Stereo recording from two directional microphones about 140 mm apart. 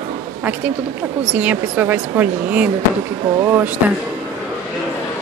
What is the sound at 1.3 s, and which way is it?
A woman's voice, 10° right (ahead or behind).